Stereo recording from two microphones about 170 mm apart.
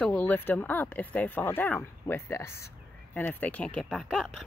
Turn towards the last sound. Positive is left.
turn(degrees=5)  # may be behind; listen again after turning